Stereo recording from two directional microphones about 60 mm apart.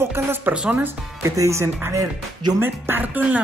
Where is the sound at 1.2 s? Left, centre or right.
Right.